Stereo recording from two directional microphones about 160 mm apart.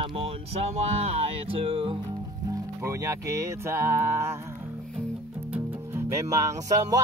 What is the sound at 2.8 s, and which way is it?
Speech, 20° right (ahead or behind).